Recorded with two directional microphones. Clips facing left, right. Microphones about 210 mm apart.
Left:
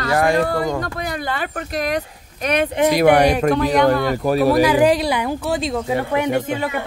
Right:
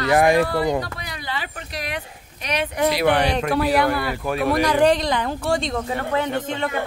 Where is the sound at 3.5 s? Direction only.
5° right (ahead or behind).